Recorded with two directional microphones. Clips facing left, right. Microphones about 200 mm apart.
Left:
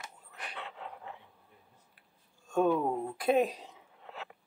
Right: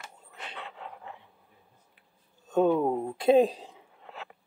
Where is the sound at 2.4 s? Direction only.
20° right (ahead or behind).